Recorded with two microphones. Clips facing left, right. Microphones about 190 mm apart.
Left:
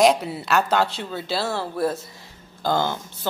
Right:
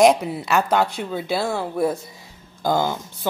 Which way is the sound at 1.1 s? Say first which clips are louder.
Right 2 dB; 15° right (ahead or behind).